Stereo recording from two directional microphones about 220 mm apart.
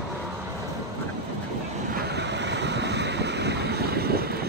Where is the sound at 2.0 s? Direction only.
50° right (ahead or behind).